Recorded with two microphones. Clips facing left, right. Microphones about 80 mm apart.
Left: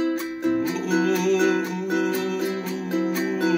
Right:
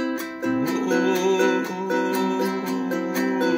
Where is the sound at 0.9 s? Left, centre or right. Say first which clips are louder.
Even; right.